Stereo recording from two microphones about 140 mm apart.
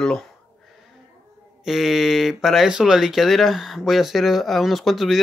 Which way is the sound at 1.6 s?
Centre (ahead or behind).